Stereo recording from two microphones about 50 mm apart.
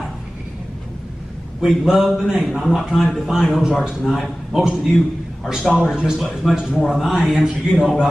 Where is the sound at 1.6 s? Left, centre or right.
Centre.